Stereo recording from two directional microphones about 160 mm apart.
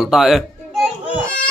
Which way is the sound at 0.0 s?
Centre (ahead or behind).